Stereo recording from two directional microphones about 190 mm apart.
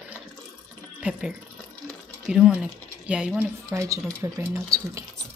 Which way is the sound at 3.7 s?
15° right (ahead or behind).